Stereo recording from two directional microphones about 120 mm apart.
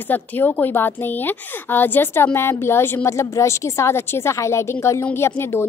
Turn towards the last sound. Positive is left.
turn(degrees=20)  # may be behind; listen again after turning